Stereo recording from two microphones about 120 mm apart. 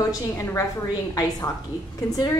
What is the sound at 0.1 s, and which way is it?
Speech, 25° left (ahead or behind).